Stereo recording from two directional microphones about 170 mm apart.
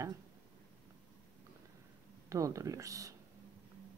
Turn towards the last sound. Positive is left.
turn(degrees=-20)  # may be behind; listen again after turning